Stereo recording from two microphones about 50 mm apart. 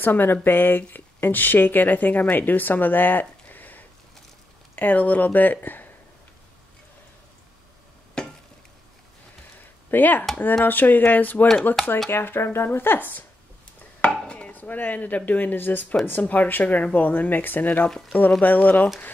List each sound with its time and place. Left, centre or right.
0.0 s speech: left
8.2 s a sound: centre
9.8 s speech: left
12.1 s speech: left
14.2 s chopping: left
14.5 s speech: left